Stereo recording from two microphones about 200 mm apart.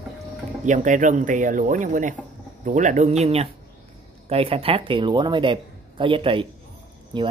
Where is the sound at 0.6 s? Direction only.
40° right (ahead or behind).